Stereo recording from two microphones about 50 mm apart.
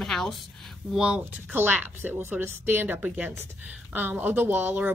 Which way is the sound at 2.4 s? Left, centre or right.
Right.